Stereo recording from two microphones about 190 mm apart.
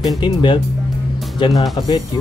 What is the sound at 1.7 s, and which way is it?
Speech, 20° left (ahead or behind).